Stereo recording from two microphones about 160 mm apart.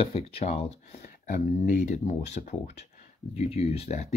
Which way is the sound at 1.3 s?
55° left (ahead or behind).